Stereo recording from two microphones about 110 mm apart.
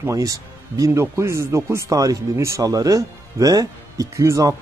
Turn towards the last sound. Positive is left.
turn(degrees=-30)  # may be behind; listen again after turning